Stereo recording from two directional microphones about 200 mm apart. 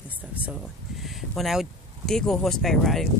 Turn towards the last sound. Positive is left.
turn(degrees=0)  # may be behind; listen again after turning